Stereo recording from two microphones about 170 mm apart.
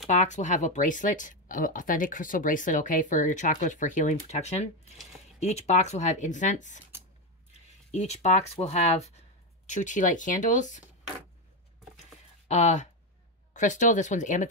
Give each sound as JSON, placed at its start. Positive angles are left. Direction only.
{"t": 0.0, "sound": "speech", "side_deg": 45}
{"t": 12.4, "sound": "speech", "side_deg": 45}